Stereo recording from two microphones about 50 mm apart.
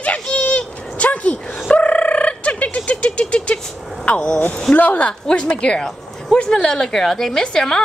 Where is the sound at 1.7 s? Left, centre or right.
Left.